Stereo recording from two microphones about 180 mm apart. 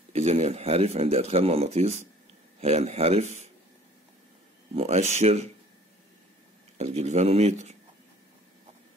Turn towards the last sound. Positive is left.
turn(degrees=-35)  # may be behind; listen again after turning